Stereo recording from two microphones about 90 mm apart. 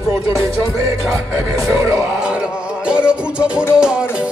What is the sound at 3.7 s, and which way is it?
Speech, 10° right (ahead or behind).